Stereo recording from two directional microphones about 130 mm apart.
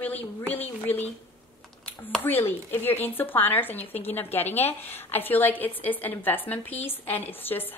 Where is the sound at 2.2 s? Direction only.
15° left (ahead or behind).